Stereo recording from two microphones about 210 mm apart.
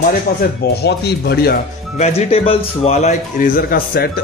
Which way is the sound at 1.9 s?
30° left (ahead or behind).